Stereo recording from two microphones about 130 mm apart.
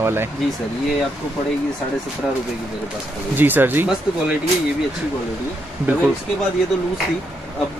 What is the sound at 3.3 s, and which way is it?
Speech, 15° right (ahead or behind).